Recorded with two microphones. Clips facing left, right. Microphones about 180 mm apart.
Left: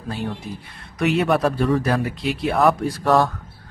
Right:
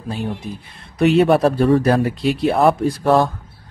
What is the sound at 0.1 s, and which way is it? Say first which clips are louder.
Speech: right 3 dB; 15° right (ahead or behind).